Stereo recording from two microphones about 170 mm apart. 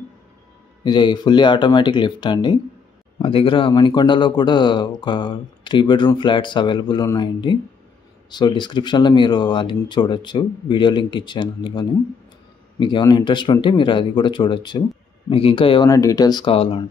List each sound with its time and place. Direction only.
0.8 s speech: 25° left (ahead or behind)
15.9 s speech: 20° left (ahead or behind)